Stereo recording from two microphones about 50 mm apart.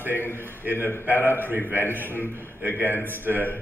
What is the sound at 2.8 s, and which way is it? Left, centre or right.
Speech, left.